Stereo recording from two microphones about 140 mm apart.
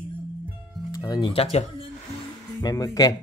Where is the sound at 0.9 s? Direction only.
30° left (ahead or behind); by 1.9 s 45° left (ahead or behind).